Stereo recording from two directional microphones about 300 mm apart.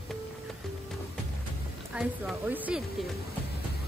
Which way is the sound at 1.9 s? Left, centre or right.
Centre.